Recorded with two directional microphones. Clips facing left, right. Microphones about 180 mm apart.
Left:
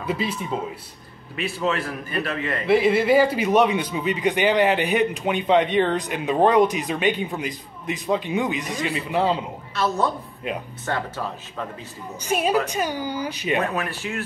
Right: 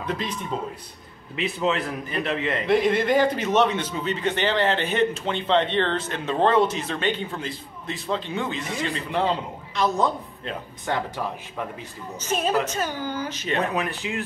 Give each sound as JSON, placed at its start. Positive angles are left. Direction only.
{"t": 0.0, "sound": "a man's voice", "side_deg": 5}
{"t": 1.3, "sound": "a man's voice", "side_deg": -20}
{"t": 2.6, "sound": "a man's voice", "side_deg": 5}
{"t": 9.8, "sound": "speech", "side_deg": -15}
{"t": 12.2, "sound": "a man's voice", "side_deg": 10}
{"t": 13.7, "sound": "speech", "side_deg": -20}